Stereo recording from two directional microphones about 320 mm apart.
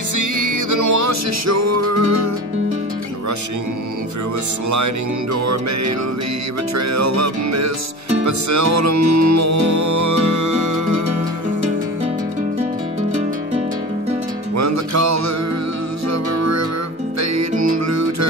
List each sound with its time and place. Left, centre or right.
0.1 s music: right
4.6 s music: right
14.5 s music: right